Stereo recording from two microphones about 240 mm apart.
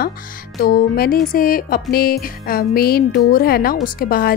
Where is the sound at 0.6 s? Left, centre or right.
Left.